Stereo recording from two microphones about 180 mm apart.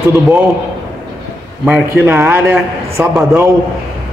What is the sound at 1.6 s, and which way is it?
A man's voice, 10° right (ahead or behind).